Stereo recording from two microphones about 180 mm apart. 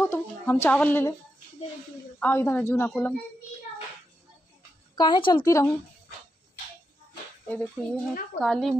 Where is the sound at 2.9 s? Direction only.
Centre (ahead or behind).